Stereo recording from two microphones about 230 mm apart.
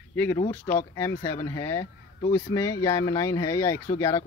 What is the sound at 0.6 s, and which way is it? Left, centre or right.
Speech, centre.